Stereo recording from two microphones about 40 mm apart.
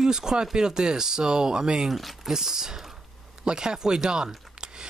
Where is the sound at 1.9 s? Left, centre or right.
Centre.